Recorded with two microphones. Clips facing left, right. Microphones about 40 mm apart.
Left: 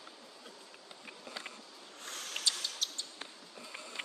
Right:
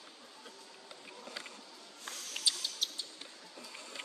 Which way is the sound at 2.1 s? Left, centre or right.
Left.